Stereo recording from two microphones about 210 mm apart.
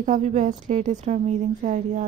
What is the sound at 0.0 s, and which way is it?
Speech, 35° right (ahead or behind).